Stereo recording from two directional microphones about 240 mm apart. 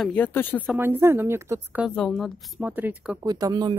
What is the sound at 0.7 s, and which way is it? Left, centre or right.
Speech, centre.